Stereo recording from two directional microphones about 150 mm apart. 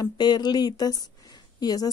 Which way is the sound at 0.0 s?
30° left (ahead or behind).